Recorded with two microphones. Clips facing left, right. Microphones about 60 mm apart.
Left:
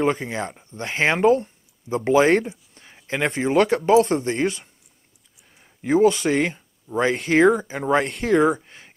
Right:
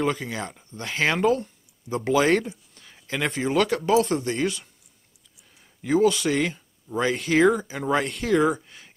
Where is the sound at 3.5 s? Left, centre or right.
Left.